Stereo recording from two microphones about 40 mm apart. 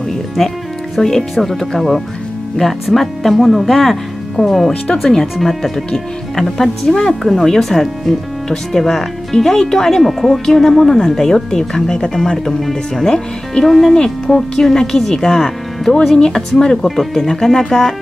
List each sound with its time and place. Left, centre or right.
0.4 s speech: centre
13.7 s speech: centre
13.9 s speech: centre